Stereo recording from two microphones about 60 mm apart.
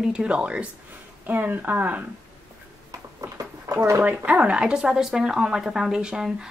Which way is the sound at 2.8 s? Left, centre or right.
Right.